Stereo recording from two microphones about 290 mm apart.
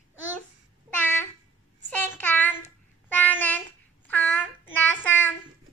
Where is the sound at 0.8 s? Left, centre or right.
Centre.